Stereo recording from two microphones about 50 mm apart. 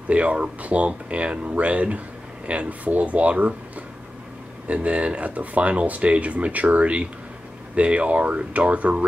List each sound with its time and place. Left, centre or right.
0.1 s speech: right
4.6 s speech: right